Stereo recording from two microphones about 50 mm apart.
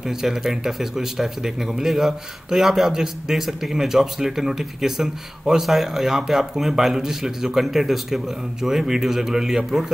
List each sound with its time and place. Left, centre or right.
0.0 s speech: centre